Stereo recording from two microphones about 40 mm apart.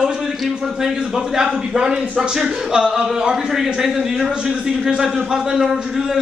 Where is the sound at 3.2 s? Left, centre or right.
Centre.